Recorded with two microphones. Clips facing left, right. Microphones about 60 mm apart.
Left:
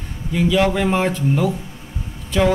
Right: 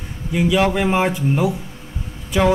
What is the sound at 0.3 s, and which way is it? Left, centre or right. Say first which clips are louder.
Speech: even; centre.